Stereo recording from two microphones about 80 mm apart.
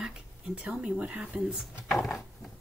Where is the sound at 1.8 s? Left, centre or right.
Centre.